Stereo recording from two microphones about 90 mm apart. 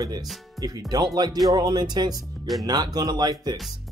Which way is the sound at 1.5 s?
50° right (ahead or behind).